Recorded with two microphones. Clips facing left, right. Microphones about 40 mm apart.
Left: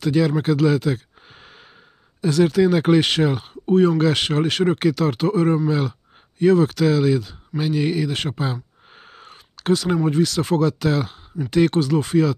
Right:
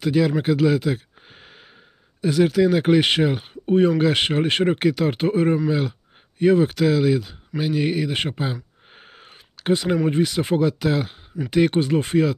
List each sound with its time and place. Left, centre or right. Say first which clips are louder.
0.0 s speech: even; centre
3.0 s speech: even; centre
5.7 s speech: left 1 dB; centre
8.9 s a sound: left 2 dB; centre
10.0 s speech: left 1 dB; right
11.8 s speech: left 1 dB; right